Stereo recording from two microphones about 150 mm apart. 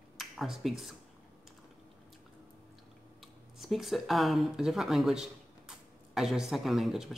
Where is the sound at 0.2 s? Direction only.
Centre (ahead or behind).